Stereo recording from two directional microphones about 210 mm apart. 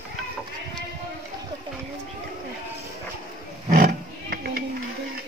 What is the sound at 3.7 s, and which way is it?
Roaring cats, 45° right (ahead or behind).